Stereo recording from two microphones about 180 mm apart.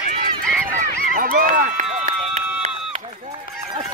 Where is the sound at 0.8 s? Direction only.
50° right (ahead or behind).